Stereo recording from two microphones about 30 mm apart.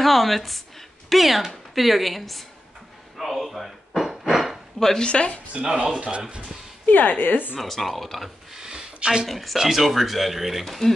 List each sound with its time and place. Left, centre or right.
0.0 s speech: centre
3.2 s a sound: centre
4.7 s a woman's voice: centre
5.0 s a woman's voice: left
5.5 s speech: right
6.9 s a woman's voice: left
7.6 s speech: centre
8.5 s a sound: right
9.3 s speech: centre
9.6 s speech: centre
10.6 s speech: centre